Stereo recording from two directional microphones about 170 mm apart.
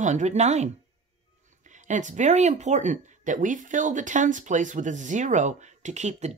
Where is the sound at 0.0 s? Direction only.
45° right (ahead or behind).